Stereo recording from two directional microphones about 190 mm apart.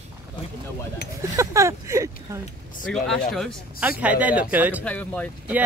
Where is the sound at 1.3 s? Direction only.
15° right (ahead or behind).